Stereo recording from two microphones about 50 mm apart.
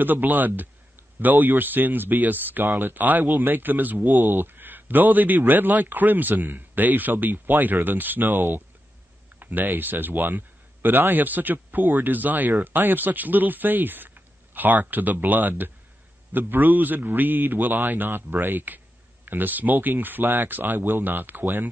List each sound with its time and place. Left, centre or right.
0.0 s speech: right